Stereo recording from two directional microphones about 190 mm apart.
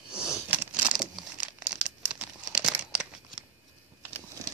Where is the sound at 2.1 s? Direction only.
5° right (ahead or behind).